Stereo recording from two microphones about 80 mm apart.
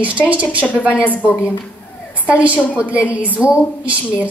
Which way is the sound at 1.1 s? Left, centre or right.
Centre.